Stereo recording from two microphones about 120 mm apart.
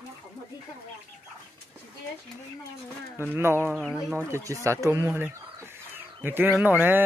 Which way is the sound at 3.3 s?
20° right (ahead or behind).